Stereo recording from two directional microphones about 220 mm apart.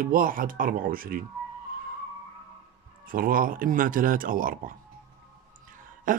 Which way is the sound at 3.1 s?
40° right (ahead or behind).